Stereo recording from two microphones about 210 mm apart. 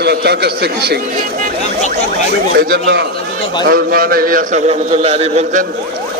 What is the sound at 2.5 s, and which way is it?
A man's voice, 45° right (ahead or behind).